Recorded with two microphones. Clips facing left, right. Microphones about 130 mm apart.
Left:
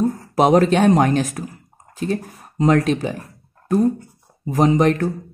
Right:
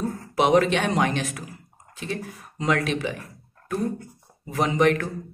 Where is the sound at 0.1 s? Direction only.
40° left (ahead or behind).